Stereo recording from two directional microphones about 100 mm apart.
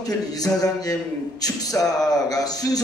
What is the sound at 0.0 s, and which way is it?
A man's voice, 40° left (ahead or behind).